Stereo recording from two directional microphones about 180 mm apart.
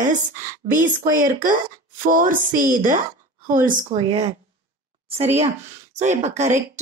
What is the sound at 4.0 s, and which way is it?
Speech, 35° right (ahead or behind).